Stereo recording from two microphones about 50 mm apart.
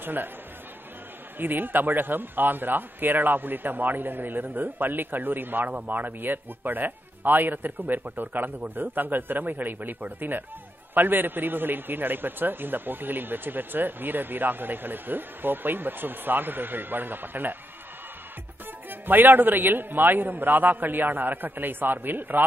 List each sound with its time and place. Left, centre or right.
0.0 s speech: right
1.4 s a man's voice: right
18.9 s a man's voice: right